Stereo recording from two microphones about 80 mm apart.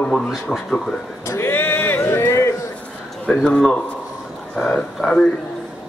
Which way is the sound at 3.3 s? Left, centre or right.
Centre.